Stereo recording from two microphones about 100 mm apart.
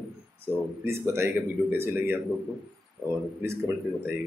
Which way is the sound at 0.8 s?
25° right (ahead or behind).